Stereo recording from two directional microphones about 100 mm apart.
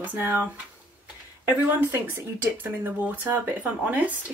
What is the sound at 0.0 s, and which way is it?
Speech, 20° right (ahead or behind).